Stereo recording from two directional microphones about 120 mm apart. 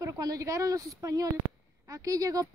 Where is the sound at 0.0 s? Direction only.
30° right (ahead or behind).